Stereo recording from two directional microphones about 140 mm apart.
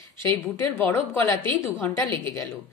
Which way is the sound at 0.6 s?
15° left (ahead or behind).